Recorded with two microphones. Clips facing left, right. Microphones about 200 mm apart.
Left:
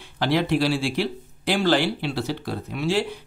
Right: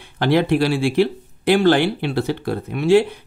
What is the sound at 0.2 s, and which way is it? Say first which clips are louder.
Speech: right 5 dB; 55° right (ahead or behind).